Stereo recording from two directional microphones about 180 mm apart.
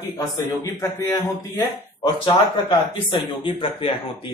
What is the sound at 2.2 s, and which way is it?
Speech, 25° left (ahead or behind).